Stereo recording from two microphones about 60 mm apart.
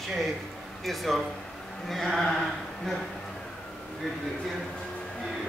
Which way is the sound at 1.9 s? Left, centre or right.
Centre.